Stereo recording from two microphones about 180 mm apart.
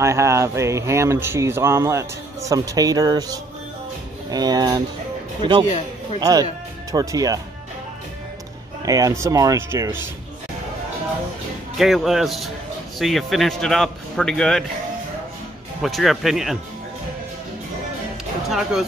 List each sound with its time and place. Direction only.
0.0 s speech: 15° right (ahead or behind)
8.8 s speech: 20° right (ahead or behind)
11.7 s speech: centre (ahead or behind)
15.8 s speech: centre (ahead or behind)
18.5 s speech: centre (ahead or behind)